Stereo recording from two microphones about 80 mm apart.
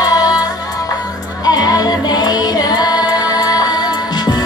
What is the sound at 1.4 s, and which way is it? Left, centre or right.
Music, left.